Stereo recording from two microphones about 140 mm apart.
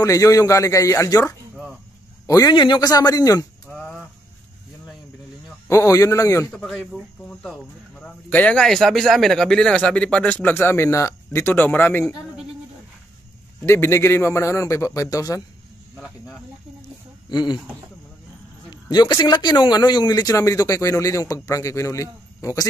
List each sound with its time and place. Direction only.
0.0 s a man's voice: 25° left (ahead or behind)
3.6 s a sound: centre (ahead or behind)
5.7 s a man's voice: 20° left (ahead or behind)
6.5 s speech: 5° left (ahead or behind)
13.7 s a man's voice: 20° left (ahead or behind)
17.3 s speech: 35° left (ahead or behind)
18.7 s a man's voice: 30° left (ahead or behind)